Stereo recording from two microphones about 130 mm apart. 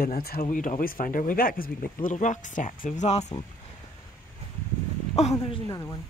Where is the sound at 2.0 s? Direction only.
70° left (ahead or behind).